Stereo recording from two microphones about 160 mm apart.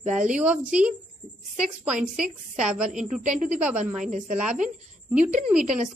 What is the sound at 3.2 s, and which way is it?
Speech, 50° right (ahead or behind).